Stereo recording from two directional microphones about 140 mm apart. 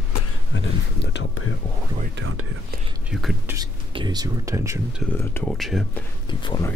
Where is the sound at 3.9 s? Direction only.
30° right (ahead or behind).